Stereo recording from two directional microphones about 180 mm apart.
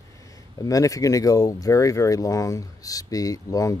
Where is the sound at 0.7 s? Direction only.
20° left (ahead or behind).